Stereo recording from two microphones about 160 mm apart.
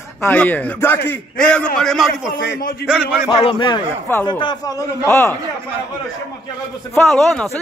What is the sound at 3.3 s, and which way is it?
Speech, 30° left (ahead or behind).